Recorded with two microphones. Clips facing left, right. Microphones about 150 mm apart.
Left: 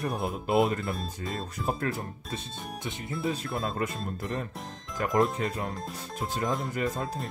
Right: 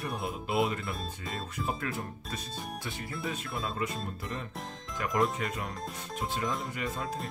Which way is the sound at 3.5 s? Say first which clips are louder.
Left 3 dB; 50° left (ahead or behind).